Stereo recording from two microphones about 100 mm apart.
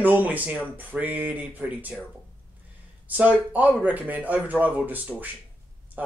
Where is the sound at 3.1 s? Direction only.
15° right (ahead or behind).